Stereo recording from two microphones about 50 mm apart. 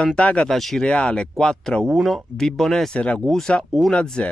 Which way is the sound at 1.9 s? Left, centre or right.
Centre.